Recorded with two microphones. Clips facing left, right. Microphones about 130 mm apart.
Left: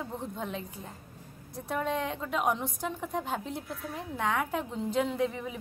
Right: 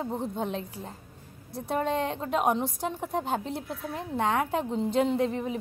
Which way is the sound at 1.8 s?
30° right (ahead or behind).